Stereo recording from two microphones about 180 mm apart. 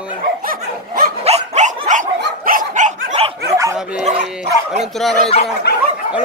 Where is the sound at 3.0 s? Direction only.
35° right (ahead or behind).